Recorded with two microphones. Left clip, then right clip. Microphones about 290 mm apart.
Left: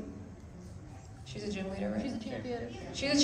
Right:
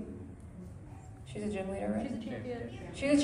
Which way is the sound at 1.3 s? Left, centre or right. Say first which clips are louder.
Right 2 dB; right.